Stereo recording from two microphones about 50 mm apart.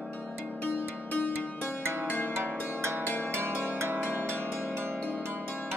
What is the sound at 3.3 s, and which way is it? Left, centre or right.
Zither, right.